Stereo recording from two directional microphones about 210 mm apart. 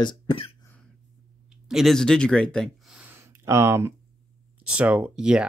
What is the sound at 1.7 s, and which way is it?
Speech, centre (ahead or behind).